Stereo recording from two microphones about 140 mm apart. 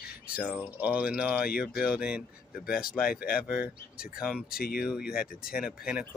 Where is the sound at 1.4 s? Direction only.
90° left.